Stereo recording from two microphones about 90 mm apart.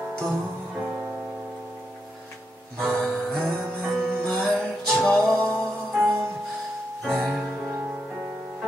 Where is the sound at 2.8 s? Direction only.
5° left (ahead or behind).